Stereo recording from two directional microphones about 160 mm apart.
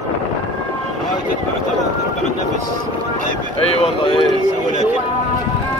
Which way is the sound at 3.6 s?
35° left (ahead or behind).